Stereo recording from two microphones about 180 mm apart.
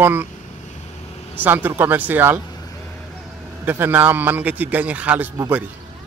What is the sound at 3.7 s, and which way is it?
A man's voice, 10° right (ahead or behind).